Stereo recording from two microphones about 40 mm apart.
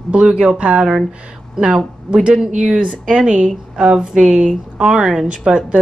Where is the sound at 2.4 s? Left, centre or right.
Centre.